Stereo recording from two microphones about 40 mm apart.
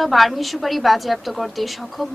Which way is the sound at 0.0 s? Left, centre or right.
Centre.